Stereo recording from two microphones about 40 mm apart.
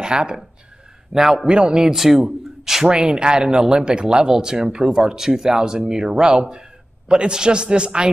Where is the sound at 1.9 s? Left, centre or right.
Centre.